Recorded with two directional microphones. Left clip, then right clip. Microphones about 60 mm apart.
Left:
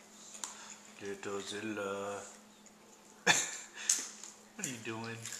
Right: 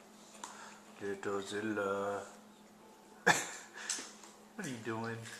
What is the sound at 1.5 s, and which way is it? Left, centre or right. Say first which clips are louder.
Speech: right 4 dB; centre.